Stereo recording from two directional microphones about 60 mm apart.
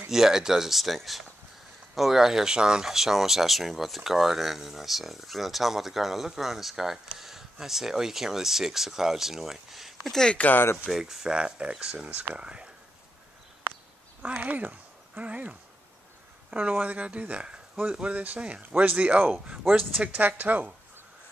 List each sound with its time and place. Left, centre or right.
0.1 s speech: centre
10.3 s speech: left
10.9 s speech: centre
11.3 s speech: centre
14.4 s speech: right